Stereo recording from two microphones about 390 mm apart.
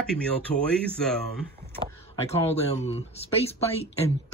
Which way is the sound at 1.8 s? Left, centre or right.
Centre.